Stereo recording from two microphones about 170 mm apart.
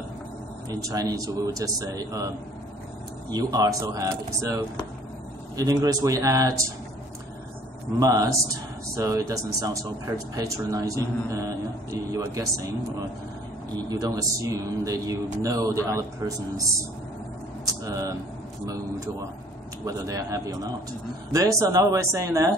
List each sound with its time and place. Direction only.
0.7 s speech: 20° right (ahead or behind)
8.0 s speech: 20° right (ahead or behind)
13.7 s speech: 20° right (ahead or behind)
17.8 s a sound: 20° right (ahead or behind)
19.8 s speech: 20° right (ahead or behind)